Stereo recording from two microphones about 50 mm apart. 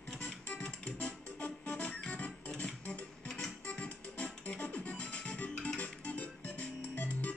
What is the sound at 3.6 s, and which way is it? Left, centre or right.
Music, left.